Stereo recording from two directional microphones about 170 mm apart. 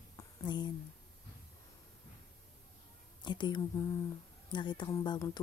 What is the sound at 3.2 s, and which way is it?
Speech, 25° left (ahead or behind).